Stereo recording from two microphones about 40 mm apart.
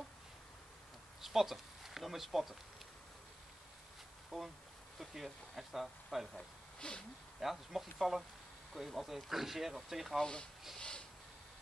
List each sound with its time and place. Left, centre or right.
1.2 s speech: centre
4.3 s speech: centre
6.8 s speech: left
7.3 s speech: centre
10.1 s speech: centre
10.8 s a sound: left